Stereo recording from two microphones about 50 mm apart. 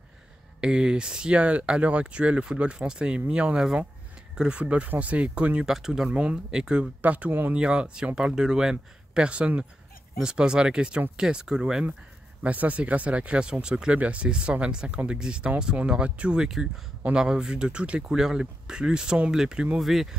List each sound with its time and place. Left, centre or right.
0.6 s speech: centre
5.7 s speech: centre
6.0 s speech: right
7.0 s speech: right
7.5 s speech: centre
12.4 s speech: right
19.8 s speech: centre